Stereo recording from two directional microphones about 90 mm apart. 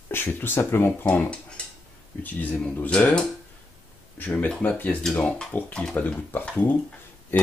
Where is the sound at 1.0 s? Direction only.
15° left (ahead or behind).